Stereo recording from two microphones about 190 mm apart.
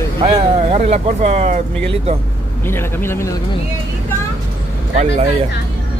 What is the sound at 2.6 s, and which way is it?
Speech, 10° left (ahead or behind).